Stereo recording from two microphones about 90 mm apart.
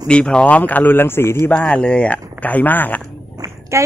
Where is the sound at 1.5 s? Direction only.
15° left (ahead or behind).